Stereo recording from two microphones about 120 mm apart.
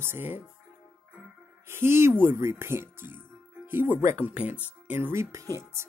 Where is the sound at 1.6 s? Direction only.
20° right (ahead or behind).